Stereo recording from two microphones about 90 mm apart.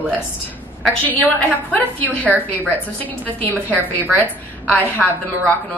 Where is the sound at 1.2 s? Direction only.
15° left (ahead or behind).